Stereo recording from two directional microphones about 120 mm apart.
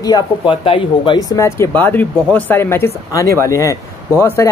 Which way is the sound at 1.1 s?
30° left (ahead or behind).